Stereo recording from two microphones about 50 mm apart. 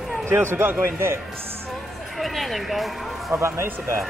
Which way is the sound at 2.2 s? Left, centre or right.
Centre.